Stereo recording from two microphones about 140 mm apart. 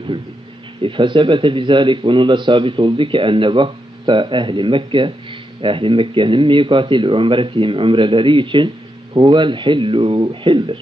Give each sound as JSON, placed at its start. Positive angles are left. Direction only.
{"t": 0.8, "sound": "a man's voice", "side_deg": -35}